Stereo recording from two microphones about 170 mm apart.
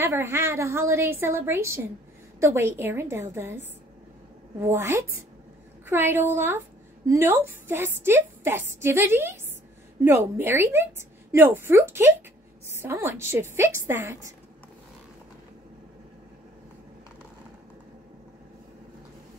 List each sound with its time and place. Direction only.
0.0 s a woman's voice: 15° right (ahead or behind)